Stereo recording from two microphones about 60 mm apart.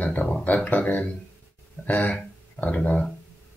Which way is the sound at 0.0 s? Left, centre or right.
Left.